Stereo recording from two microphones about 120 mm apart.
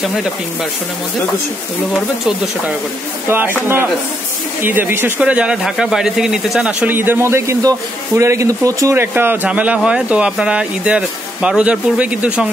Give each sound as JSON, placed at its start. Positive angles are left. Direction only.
{"t": 3.3, "sound": "speech", "side_deg": -20}